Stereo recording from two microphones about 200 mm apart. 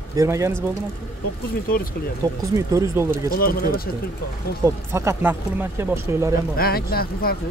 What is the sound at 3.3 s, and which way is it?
Speech, 45° left (ahead or behind).